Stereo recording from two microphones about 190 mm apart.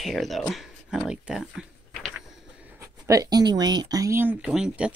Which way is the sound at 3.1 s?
20° right (ahead or behind).